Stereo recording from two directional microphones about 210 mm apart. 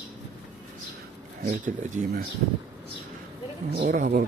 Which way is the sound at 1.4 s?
40° right (ahead or behind).